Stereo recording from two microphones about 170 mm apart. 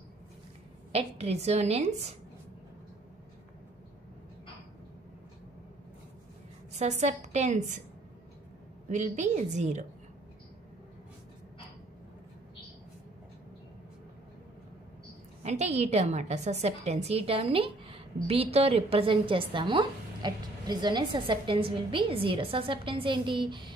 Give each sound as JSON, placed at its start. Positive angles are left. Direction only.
{"t": 0.9, "sound": "a woman's voice", "side_deg": -35}
{"t": 6.7, "sound": "a woman's voice", "side_deg": -45}
{"t": 8.8, "sound": "a woman's voice", "side_deg": -45}
{"t": 15.4, "sound": "a woman's voice", "side_deg": -40}